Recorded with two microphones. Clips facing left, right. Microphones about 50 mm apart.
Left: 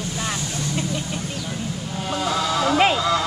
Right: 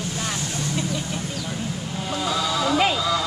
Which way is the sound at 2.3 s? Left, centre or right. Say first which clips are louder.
Left 2 dB; left.